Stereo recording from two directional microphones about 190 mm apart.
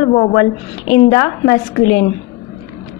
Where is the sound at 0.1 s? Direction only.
35° left (ahead or behind).